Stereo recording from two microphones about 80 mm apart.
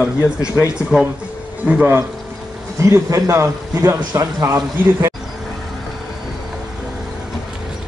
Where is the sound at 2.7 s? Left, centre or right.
Right.